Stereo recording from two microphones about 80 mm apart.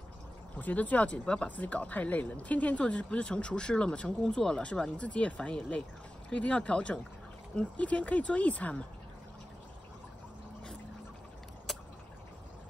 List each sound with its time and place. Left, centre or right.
0.6 s speech: left